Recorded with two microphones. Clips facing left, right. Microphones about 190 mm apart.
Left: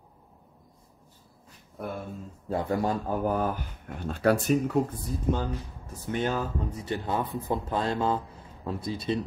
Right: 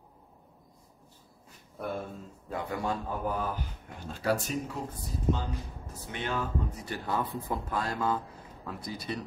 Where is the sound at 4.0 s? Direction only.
55° left (ahead or behind).